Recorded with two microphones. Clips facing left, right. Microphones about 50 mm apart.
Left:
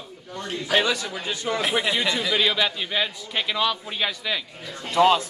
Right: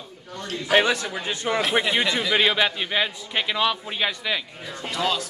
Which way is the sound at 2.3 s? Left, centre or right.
Right.